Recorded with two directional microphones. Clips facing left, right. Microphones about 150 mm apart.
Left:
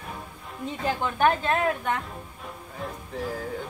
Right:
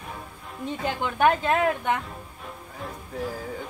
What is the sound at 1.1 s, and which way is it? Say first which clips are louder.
Speech: right 3 dB; 20° right (ahead or behind).